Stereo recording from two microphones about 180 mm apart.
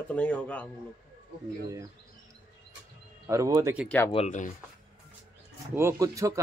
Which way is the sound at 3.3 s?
20° right (ahead or behind).